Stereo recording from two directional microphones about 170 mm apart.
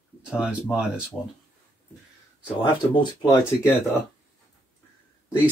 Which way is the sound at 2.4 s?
25° left (ahead or behind).